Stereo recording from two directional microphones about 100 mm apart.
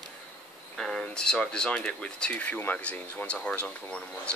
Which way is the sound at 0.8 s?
5° left (ahead or behind).